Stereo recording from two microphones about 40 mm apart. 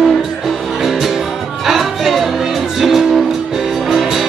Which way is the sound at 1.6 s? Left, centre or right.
Centre.